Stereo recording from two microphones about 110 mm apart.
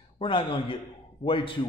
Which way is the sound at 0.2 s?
50° left (ahead or behind).